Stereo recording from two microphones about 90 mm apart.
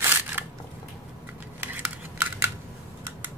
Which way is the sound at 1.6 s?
25° right (ahead or behind).